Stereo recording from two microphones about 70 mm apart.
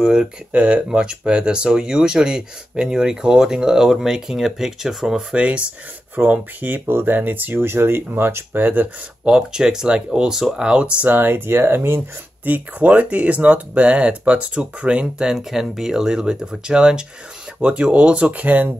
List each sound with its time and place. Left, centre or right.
0.0 s speech: centre; by 9.3 s right
9.3 s speech: centre
11.1 s speech: right
12.4 s speech: right